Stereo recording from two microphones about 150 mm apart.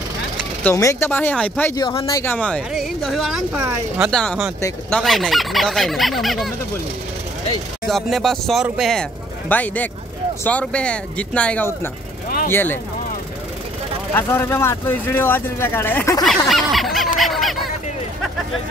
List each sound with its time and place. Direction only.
0.7 s speech: 20° left (ahead or behind)
1.8 s speech: 30° left (ahead or behind)
2.3 s speech: 5° left (ahead or behind)
7.9 s speech: centre (ahead or behind)
9.5 s speech: 10° left (ahead or behind)
14.1 s speech: 15° left (ahead or behind)
16.3 s a sound: centre (ahead or behind)